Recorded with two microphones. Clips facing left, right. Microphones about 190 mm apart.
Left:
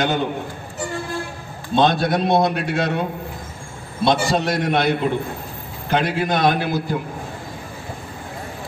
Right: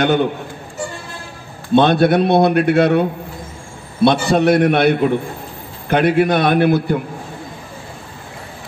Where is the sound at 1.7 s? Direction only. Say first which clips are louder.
Right 6 dB; 60° right (ahead or behind).